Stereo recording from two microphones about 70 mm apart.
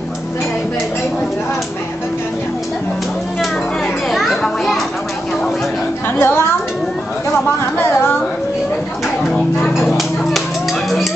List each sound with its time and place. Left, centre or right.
4.1 s children playing: centre
6.0 s a woman's voice: left
9.8 s music: centre